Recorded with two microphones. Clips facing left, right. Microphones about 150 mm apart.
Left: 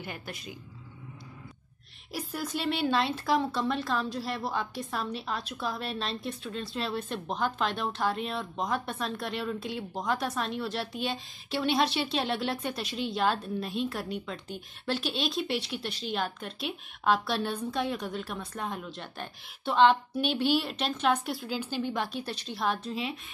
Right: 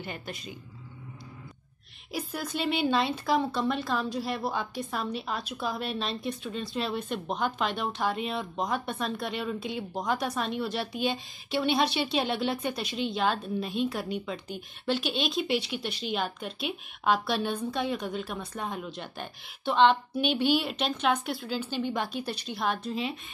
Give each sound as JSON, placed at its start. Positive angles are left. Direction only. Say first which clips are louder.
{"t": 0.0, "sound": "a woman's voice", "louder": "right 2 dB", "side_deg": 5}
{"t": 2.1, "sound": "a woman's voice", "louder": "right 1 dB", "side_deg": 5}